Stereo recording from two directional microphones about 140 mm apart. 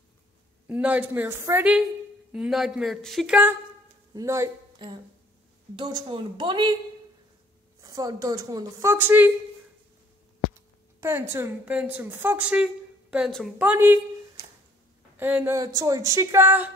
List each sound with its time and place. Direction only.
0.7 s a woman's voice: 10° right (ahead or behind)
2.3 s speech: 5° right (ahead or behind)
4.1 s speech: 25° right (ahead or behind)
5.8 s speech: 30° right (ahead or behind)
7.8 s speech: 25° right (ahead or behind)
11.0 s a woman's voice: 20° right (ahead or behind)